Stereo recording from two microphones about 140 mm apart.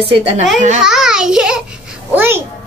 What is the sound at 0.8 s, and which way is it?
A child's voice, 5° right (ahead or behind).